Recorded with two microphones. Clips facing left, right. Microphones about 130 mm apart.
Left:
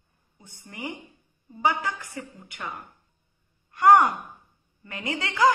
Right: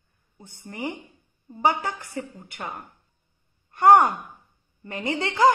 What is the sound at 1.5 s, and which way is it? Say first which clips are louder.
A woman's voice: right 2 dB; 30° right (ahead or behind).